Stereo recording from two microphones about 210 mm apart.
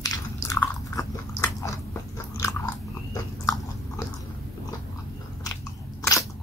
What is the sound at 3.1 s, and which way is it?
Biting, 15° left (ahead or behind).